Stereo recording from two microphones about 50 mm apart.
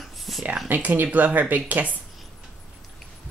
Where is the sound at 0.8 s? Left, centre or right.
Right.